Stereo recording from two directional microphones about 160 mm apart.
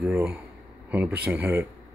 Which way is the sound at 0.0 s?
5° right (ahead or behind).